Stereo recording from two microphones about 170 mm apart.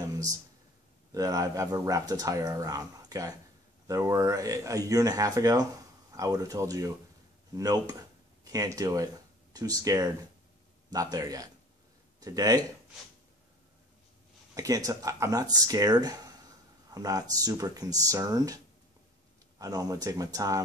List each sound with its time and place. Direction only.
1.1 s speech: 20° right (ahead or behind)
14.5 s speech: 20° right (ahead or behind)
19.6 s speech: 20° right (ahead or behind)